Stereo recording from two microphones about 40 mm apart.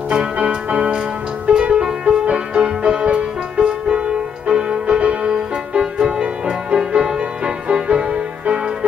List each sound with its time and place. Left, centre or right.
0.5 s music: right